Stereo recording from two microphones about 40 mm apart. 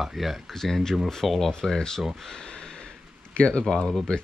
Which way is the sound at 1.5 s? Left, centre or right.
Centre.